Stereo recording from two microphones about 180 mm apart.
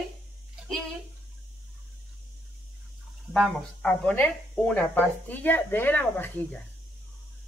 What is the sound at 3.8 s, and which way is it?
Speech, 5° left (ahead or behind).